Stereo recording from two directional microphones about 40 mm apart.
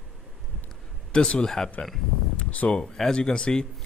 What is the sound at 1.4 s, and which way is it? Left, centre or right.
Speech, centre.